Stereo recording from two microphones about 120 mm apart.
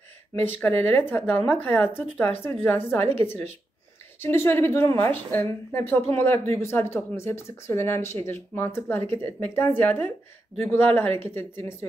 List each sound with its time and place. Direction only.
0.9 s a woman's voice: 15° left (ahead or behind)
1.3 s a woman's voice: 50° right (ahead or behind)
1.6 s a woman's voice: 20° left (ahead or behind)